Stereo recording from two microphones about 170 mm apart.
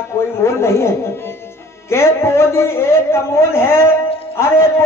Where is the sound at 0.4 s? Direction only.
15° left (ahead or behind).